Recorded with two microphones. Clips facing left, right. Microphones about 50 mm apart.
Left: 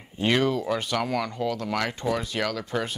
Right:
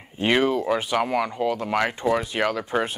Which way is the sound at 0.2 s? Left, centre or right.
Centre.